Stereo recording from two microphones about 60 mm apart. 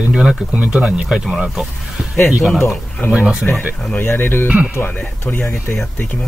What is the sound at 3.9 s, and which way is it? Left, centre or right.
Speech, left.